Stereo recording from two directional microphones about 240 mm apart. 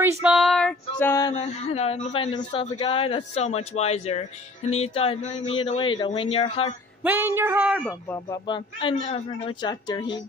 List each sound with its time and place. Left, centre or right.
0.2 s female singing: centre
1.3 s speech: left
7.0 s a sound: centre
8.1 s speech: centre